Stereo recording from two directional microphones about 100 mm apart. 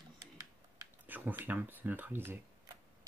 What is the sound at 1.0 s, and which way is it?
Speech, 20° right (ahead or behind).